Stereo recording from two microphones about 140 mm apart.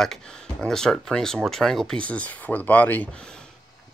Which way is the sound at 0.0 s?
5° left (ahead or behind).